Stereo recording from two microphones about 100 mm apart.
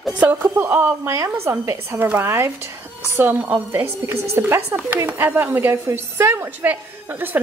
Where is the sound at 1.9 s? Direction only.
20° right (ahead or behind).